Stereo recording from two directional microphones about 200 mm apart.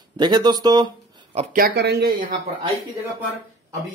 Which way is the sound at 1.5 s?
50° right (ahead or behind).